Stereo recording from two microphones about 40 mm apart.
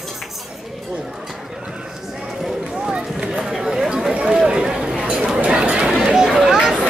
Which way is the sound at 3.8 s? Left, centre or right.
Centre.